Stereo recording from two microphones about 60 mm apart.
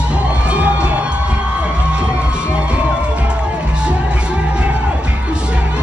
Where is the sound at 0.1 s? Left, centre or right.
Centre.